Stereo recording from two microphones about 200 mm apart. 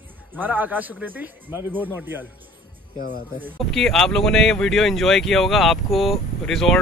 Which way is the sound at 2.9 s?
45° left (ahead or behind).